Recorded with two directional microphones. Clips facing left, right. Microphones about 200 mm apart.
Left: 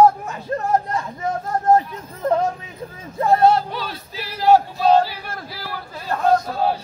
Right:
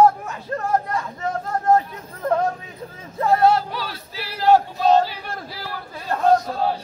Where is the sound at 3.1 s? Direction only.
20° left (ahead or behind).